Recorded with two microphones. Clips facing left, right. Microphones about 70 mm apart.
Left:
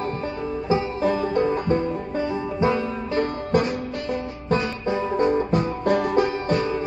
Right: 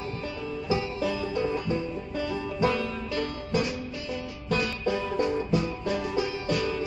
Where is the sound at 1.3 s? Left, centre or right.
Left.